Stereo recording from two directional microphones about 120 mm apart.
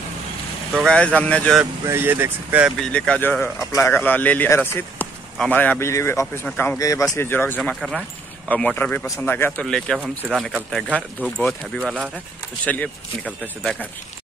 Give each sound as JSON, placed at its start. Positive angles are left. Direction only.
{"t": 0.7, "sound": "speech", "side_deg": 5}
{"t": 1.9, "sound": "speech", "side_deg": -20}
{"t": 2.8, "sound": "speech", "side_deg": 5}
{"t": 6.4, "sound": "speech", "side_deg": 10}
{"t": 6.8, "sound": "speech", "side_deg": 25}
{"t": 9.7, "sound": "speech", "side_deg": 5}